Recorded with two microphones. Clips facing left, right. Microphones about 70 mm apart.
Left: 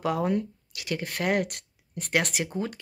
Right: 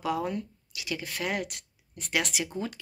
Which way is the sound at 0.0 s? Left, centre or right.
Left.